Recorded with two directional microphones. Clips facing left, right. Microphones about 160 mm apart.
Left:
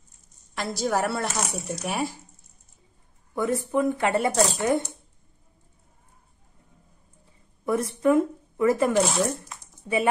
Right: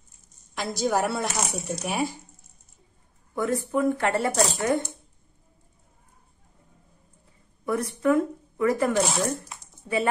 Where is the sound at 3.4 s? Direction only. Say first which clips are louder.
Left 1 dB; 20° left (ahead or behind).